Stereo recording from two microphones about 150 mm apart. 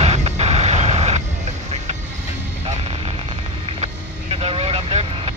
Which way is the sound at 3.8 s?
40° right (ahead or behind).